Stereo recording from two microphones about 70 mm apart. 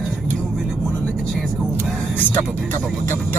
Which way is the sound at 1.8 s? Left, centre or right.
Left.